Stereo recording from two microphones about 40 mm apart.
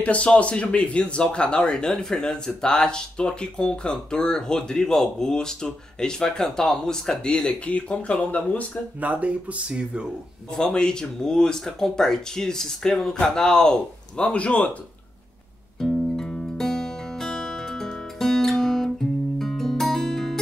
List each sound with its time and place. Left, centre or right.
0.0 s speech: left; by 7.4 s centre
7.4 s speech: left
9.0 s speech: right
10.5 s speech: centre
15.8 s music: centre